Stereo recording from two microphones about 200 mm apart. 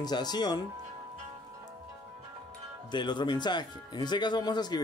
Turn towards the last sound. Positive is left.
turn(degrees=20)  # may be behind; listen again after turning